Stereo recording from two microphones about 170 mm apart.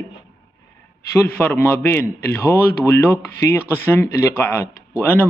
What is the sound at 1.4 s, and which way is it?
A man's voice, 10° left (ahead or behind).